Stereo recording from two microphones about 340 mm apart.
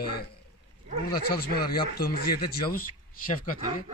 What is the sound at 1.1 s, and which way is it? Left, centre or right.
Speech, left.